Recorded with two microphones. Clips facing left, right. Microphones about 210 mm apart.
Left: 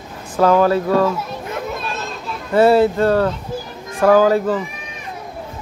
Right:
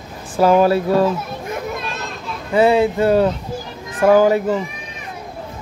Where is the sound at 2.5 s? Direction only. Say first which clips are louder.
Left 2 dB; centre (ahead or behind).